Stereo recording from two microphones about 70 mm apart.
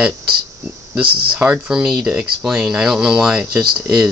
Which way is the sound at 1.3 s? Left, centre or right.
Right.